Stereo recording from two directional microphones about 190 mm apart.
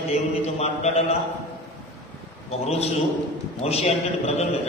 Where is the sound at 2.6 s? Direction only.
35° left (ahead or behind).